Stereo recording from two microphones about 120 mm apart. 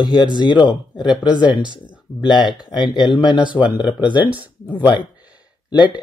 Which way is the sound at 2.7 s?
40° left (ahead or behind).